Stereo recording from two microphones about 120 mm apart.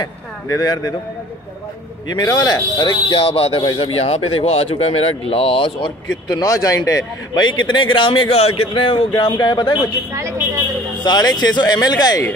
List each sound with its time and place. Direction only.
0.0 s speech: 30° left (ahead or behind)
2.4 s speech: 35° left (ahead or behind)
11.1 s speech: 35° left (ahead or behind)